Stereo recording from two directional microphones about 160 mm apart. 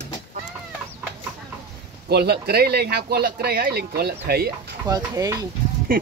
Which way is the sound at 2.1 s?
90° right.